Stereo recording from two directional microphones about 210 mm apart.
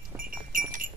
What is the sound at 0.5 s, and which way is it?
Goat, 40° right (ahead or behind).